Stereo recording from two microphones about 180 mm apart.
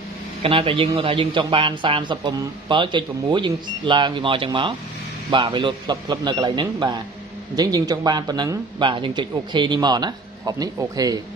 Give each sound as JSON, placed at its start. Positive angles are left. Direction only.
{"t": 0.4, "sound": "a man's voice", "side_deg": -30}